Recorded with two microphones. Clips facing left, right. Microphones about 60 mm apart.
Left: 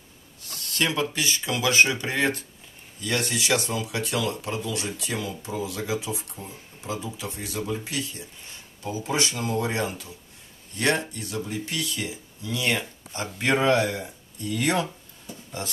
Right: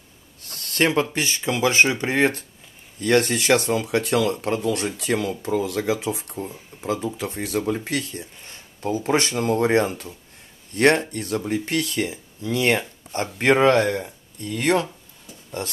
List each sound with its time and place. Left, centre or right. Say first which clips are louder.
0.7 s speech: right 5 dB; right
3.0 s speech: right 8 dB; right